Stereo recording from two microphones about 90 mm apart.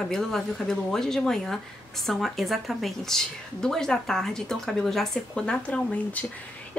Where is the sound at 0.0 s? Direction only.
5° left (ahead or behind).